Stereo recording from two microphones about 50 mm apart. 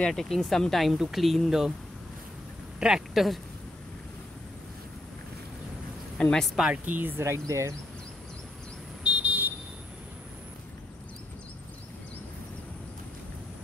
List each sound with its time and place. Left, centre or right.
0.1 s speech: centre
2.8 s speech: centre
6.2 s speech: left
6.6 s speech: centre
6.9 s speech: right
7.2 s speech: right
9.0 s vehicle: right